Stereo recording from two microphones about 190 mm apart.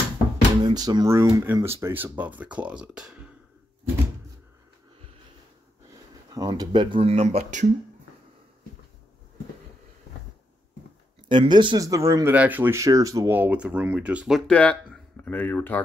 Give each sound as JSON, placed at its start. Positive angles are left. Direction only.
{"t": 0.6, "sound": "speech", "side_deg": -25}
{"t": 6.3, "sound": "speech", "side_deg": -20}
{"t": 11.2, "sound": "speech", "side_deg": -25}